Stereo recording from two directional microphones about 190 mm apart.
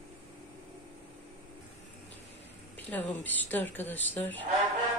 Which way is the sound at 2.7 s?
10° left (ahead or behind).